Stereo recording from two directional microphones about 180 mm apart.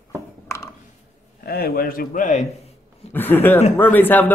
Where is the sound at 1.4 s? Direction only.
55° left (ahead or behind).